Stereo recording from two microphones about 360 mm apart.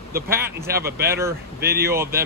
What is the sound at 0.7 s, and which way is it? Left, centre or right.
Speech, right.